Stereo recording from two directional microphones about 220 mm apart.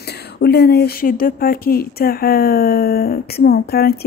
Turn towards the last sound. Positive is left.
turn(degrees=45)  # may be behind; listen again after turning